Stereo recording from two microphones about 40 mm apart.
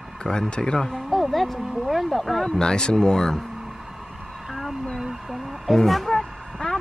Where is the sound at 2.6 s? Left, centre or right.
Centre.